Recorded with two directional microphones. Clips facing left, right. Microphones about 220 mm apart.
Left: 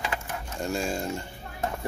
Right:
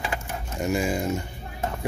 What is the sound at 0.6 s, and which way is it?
Speech, 20° right (ahead or behind).